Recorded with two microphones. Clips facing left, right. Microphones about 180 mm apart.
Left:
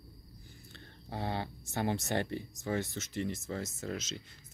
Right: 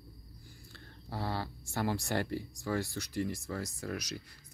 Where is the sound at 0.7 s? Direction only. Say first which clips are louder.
Even; 20° left (ahead or behind).